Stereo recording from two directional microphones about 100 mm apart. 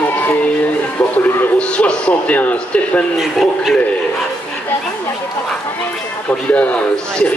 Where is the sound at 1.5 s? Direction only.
15° left (ahead or behind).